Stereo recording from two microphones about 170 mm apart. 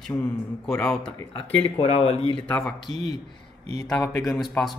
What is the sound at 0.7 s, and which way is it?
Speech, 5° left (ahead or behind).